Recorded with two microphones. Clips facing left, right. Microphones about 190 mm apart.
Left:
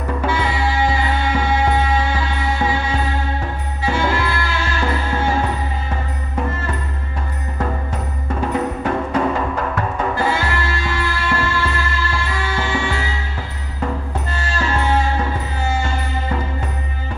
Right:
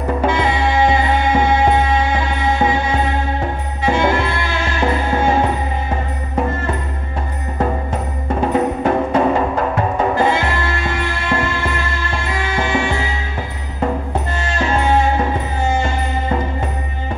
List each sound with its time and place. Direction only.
0.2 s music: 20° right (ahead or behind)
8.4 s music: 30° right (ahead or behind)
14.4 s music: 20° right (ahead or behind)